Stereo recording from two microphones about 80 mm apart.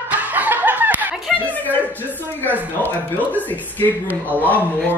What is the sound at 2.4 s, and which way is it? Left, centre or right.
Speech, left.